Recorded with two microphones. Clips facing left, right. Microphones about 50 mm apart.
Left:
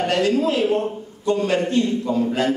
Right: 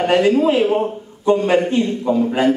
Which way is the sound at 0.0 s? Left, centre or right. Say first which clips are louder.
Right 5 dB; centre.